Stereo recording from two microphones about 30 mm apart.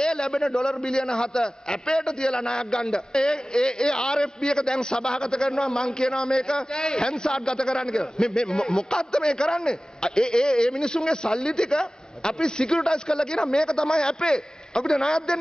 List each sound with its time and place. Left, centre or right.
0.0 s a sound: left
0.3 s a man's voice: centre
0.8 s a man's voice: left